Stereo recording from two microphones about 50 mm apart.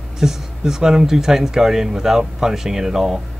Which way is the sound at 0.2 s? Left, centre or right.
Centre.